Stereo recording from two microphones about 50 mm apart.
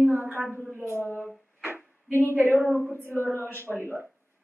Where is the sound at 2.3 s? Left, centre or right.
Right.